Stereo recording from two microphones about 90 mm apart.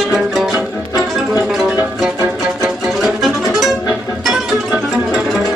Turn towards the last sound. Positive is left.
turn(degrees=-5)  # may be behind; listen again after turning